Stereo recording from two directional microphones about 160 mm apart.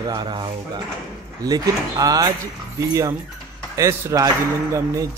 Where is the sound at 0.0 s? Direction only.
25° right (ahead or behind).